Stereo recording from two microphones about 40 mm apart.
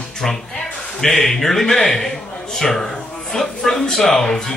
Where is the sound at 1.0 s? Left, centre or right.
Centre.